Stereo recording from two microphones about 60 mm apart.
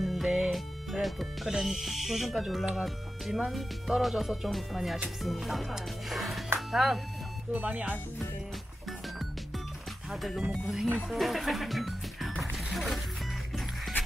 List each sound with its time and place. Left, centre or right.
0.0 s music: centre
1.6 s speech: centre
7.5 s speech: right
10.5 s speech: centre
12.7 s music: centre